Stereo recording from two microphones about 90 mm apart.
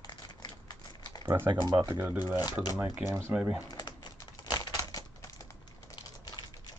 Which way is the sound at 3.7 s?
50° left (ahead or behind).